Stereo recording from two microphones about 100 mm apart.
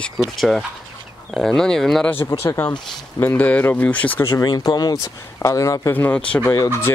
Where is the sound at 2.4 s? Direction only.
25° left (ahead or behind).